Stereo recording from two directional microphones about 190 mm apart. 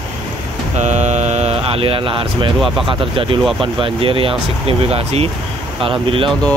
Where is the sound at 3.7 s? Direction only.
30° right (ahead or behind).